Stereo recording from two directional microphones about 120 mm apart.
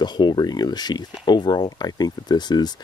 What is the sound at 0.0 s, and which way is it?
Speech, 40° left (ahead or behind).